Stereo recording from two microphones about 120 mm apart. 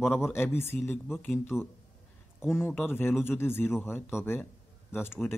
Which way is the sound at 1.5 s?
5° right (ahead or behind).